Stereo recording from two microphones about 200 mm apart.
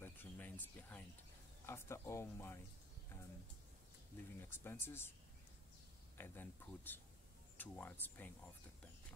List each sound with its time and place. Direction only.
0.0 s a sound: 10° left (ahead or behind)
1.7 s speech: 15° left (ahead or behind)
4.4 s speech: 10° left (ahead or behind)
6.1 s speech: 10° left (ahead or behind)